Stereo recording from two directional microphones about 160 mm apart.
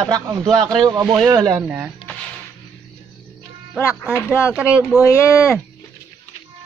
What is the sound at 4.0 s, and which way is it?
Speech, 15° left (ahead or behind).